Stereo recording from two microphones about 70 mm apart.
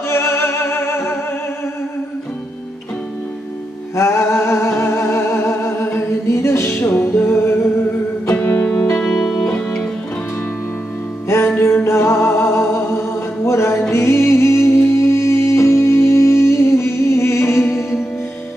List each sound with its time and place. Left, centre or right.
0.1 s music: left
3.9 s music: left
8.9 s music: centre
11.5 s music: left